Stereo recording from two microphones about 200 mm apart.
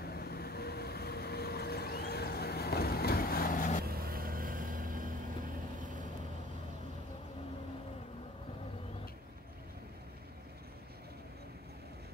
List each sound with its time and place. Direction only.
0.0 s vehicle: 50° left (ahead or behind)
3.8 s vehicle: 50° right (ahead or behind)